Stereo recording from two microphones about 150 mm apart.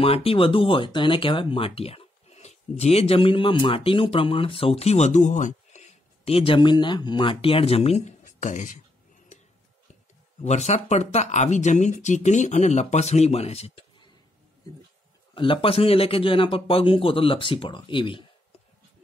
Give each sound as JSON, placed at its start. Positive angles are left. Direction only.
{"t": 0.0, "sound": "speech", "side_deg": 40}
{"t": 10.4, "sound": "speech", "side_deg": 50}
{"t": 15.3, "sound": "speech", "side_deg": 35}